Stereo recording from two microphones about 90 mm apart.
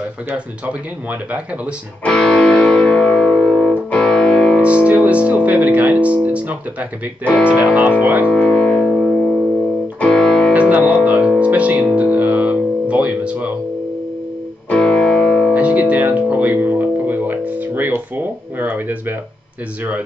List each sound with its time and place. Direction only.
2.0 s music: 10° left (ahead or behind)
4.8 s speech: 15° right (ahead or behind)
8.3 s music: 10° left (ahead or behind)
10.7 s music: 15° right (ahead or behind)
14.7 s music: 10° left (ahead or behind)
15.5 s music: 15° right (ahead or behind)